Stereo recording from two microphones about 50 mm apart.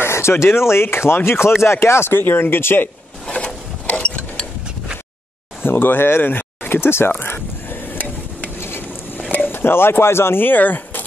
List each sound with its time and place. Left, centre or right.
0.0 s a sound: left
0.5 s speech: left
3.3 s mechanisms: left
5.6 s speech: left
7.1 s stir: left
8.5 s a sound: left
9.3 s speech: left